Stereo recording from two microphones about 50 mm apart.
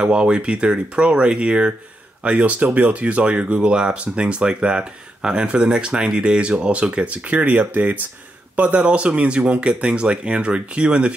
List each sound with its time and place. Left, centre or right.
0.0 s speech: right